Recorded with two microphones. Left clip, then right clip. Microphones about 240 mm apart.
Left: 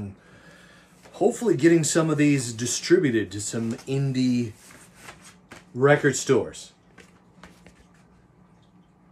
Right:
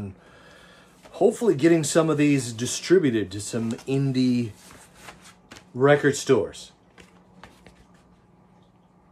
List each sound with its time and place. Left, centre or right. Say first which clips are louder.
0.3 s speech: right 1 dB; centre
5.8 s speech: right 1 dB; centre